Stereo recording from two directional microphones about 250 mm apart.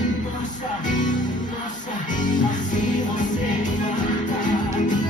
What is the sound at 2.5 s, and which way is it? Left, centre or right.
Music, left.